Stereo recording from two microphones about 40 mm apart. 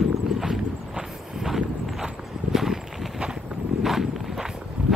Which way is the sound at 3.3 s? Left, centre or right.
Centre.